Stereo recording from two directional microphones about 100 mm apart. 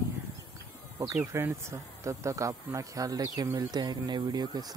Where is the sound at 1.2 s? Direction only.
25° right (ahead or behind).